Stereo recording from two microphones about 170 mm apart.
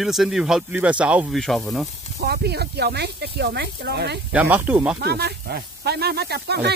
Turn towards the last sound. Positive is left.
turn(degrees=-75)  # may be behind; listen again after turning